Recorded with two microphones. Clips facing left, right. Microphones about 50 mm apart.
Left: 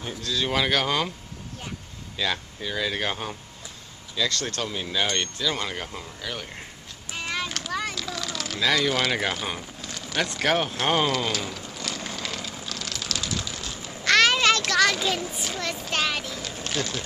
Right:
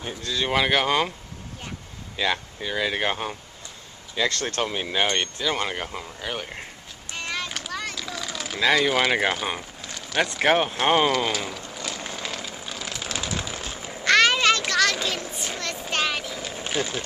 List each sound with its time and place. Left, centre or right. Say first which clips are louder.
0.2 s speech: right 2 dB; centre
2.1 s speech: right 3 dB; centre
4.1 s speech: right 2 dB; right
7.1 s clip-clop: left 1 dB; centre
7.9 s a sound: left 1 dB; centre
10.4 s speech: right 3 dB; centre
11.7 s vehicle: even; centre
12.6 s vehicle: right 1 dB; centre
14.0 s a sound: right 1 dB; centre
15.9 s boat: right 2 dB; centre